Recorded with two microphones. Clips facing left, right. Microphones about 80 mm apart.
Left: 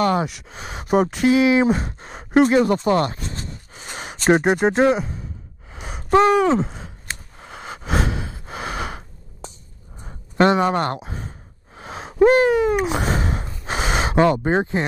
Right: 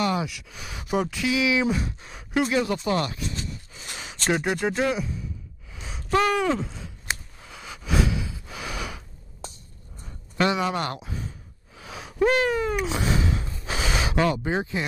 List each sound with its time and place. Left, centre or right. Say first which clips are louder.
0.0 s speech: left 6 dB; left
0.7 s speech: left 7 dB; left
5.7 s gasp: left 6 dB; left
6.6 s sigh: left 7 dB; left
7.3 s gasp: left 6 dB; left
10.0 s a sound: left 7 dB; left
11.1 s gasp: left 2 dB; left
12.4 s a sound: left 7 dB; centre
12.9 s gasp: left 3 dB; left
14.5 s speech: left 7 dB; left